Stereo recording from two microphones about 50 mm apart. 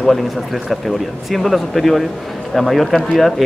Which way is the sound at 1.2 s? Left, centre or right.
Centre.